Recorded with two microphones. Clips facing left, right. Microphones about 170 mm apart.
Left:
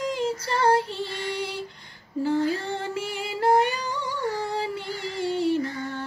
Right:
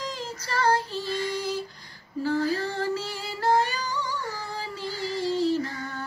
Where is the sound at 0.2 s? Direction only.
25° left (ahead or behind).